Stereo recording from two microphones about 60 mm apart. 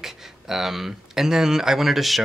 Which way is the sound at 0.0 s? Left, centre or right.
Centre.